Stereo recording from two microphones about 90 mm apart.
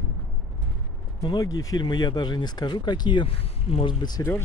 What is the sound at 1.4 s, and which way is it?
Speech, 40° left (ahead or behind).